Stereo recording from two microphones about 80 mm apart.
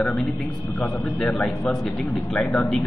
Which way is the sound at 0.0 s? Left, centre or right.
Centre.